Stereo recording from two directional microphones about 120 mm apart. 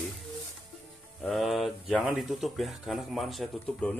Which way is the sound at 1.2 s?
Centre (ahead or behind).